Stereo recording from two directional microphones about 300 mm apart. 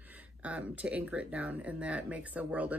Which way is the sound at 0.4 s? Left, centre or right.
Centre.